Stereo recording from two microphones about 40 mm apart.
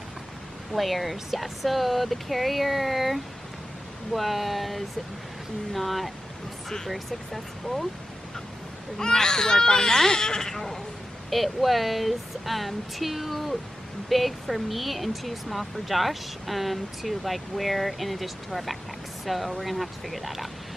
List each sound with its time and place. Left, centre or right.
0.7 s speech: centre
8.9 s speech: centre
11.2 s speech: centre